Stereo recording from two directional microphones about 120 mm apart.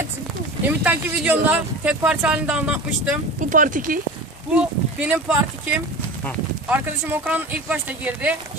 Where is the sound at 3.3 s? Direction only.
90° right.